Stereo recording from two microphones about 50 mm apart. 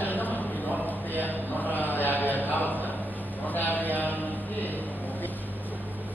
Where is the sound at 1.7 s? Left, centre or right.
Left.